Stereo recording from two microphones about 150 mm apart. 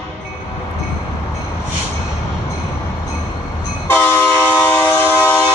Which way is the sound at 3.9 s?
15° left (ahead or behind).